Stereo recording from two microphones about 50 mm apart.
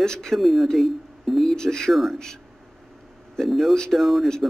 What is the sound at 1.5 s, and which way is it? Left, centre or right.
Speech, centre.